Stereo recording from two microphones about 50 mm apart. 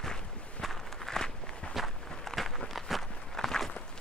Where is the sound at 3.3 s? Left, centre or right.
Centre.